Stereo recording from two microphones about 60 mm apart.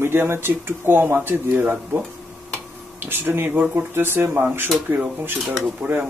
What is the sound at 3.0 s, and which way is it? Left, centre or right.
Speech, right.